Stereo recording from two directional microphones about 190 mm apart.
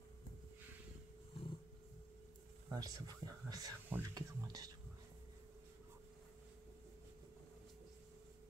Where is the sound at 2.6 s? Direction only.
20° right (ahead or behind).